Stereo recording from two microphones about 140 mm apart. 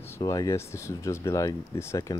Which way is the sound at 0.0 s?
20° left (ahead or behind).